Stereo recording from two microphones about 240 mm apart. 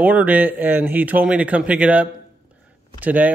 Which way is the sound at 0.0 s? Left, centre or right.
Centre.